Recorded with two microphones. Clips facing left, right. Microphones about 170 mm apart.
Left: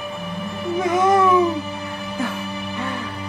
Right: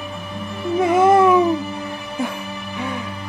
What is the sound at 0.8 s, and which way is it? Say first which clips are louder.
Speech: right 4 dB; 30° right (ahead or behind).